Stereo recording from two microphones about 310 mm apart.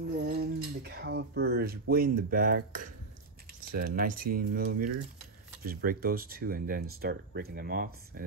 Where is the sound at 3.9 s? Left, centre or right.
Right.